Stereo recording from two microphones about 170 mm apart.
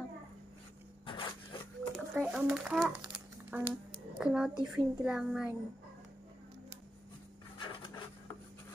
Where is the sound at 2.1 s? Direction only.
5° right (ahead or behind).